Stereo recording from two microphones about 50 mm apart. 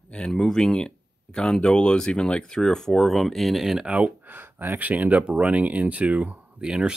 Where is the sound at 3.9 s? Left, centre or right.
Right.